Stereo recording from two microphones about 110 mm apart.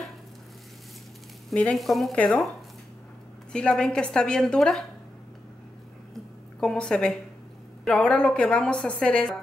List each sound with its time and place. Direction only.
1.5 s speech: 10° left (ahead or behind)
3.5 s a woman's voice: 5° left (ahead or behind)
6.6 s a woman's voice: 5° left (ahead or behind)